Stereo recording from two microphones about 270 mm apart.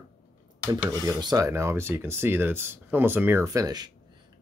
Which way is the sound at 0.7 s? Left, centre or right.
Centre.